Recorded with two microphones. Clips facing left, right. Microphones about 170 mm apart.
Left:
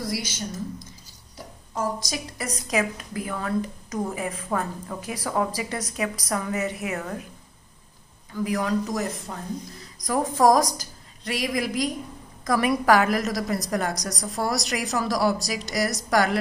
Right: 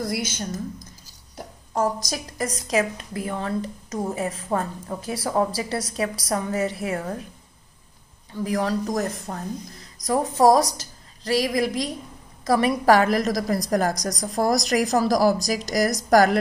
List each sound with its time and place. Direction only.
0.0 s a woman's voice: 55° right (ahead or behind)
1.7 s a woman's voice: 40° right (ahead or behind)
8.3 s a woman's voice: 30° right (ahead or behind)
10.0 s a woman's voice: 30° right (ahead or behind)